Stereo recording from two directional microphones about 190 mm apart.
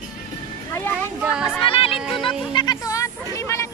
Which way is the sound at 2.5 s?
25° left (ahead or behind).